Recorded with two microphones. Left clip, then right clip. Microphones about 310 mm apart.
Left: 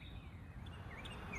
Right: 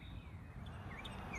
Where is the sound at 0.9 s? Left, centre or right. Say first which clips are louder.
Right 1 dB; centre.